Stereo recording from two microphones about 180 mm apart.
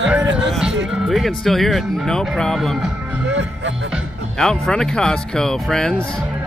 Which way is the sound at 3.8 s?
Centre (ahead or behind).